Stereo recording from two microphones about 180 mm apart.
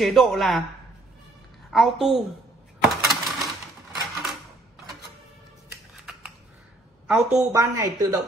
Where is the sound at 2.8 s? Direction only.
Centre (ahead or behind).